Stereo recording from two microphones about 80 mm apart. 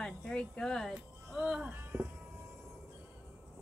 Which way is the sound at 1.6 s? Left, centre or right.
Right.